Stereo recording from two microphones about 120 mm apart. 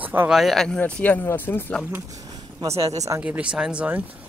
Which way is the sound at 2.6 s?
30° right (ahead or behind).